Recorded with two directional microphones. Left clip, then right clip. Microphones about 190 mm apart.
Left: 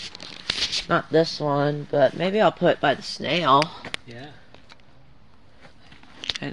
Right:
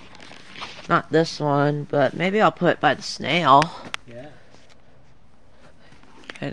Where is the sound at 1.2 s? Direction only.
60° right (ahead or behind).